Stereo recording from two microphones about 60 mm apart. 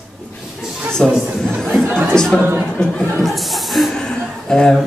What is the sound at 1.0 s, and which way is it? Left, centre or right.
Speech, centre.